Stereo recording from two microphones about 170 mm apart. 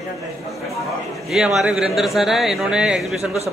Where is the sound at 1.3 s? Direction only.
Centre (ahead or behind).